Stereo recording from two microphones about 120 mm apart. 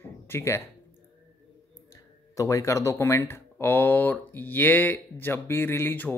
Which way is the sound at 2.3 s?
25° left (ahead or behind).